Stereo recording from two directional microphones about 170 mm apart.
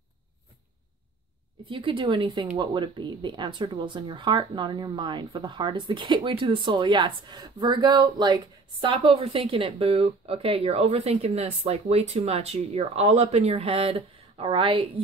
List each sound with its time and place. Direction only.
1.7 s speech: 30° right (ahead or behind)